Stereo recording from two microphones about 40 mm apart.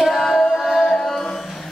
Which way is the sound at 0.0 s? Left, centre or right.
Centre.